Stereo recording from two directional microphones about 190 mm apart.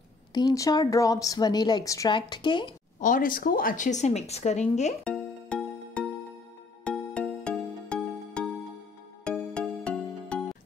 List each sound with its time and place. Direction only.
0.3 s speech: 20° left (ahead or behind)
3.0 s a woman's voice: 45° left (ahead or behind)
5.0 s music: 5° left (ahead or behind)